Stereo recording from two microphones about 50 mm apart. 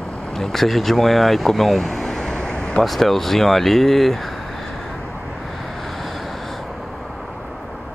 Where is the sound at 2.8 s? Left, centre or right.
Centre.